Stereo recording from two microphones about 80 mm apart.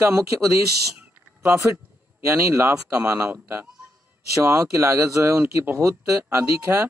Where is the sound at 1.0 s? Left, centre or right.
Right.